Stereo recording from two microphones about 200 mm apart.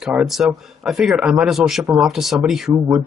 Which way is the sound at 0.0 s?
5° right (ahead or behind).